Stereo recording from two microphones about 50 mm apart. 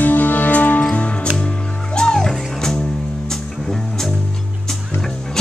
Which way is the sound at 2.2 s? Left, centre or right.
Centre.